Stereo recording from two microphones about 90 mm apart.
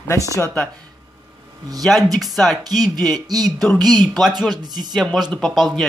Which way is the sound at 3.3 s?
45° right (ahead or behind).